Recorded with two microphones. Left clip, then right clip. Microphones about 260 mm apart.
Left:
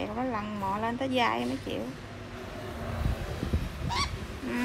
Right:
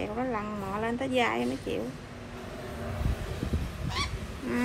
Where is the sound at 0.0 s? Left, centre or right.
Centre.